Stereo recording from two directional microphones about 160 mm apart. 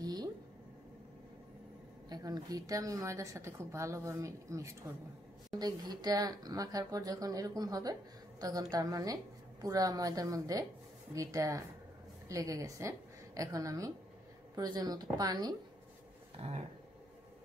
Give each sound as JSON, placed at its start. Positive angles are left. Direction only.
{"t": 0.0, "sound": "a sound", "side_deg": -25}
{"t": 2.0, "sound": "a woman's voice", "side_deg": -25}
{"t": 16.3, "sound": "speech", "side_deg": -35}